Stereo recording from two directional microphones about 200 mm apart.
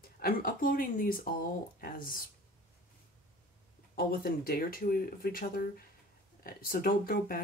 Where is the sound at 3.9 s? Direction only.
45° left (ahead or behind).